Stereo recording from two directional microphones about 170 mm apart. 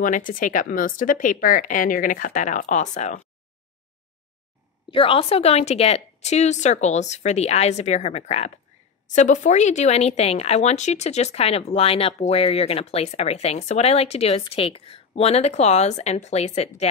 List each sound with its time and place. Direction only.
0.0 s speech: 50° left (ahead or behind)
4.9 s speech: 30° left (ahead or behind)